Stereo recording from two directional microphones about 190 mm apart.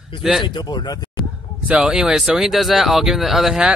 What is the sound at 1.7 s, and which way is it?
Speech, 5° right (ahead or behind).